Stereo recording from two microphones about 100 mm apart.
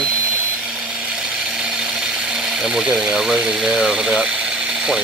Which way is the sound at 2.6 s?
5° right (ahead or behind).